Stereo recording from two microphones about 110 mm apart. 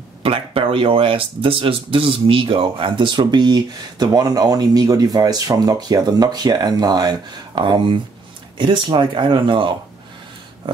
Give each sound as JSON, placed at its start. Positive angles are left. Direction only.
{"t": 0.2, "sound": "speech", "side_deg": -60}